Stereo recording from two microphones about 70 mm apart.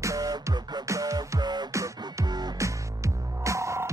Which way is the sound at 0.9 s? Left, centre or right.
Right.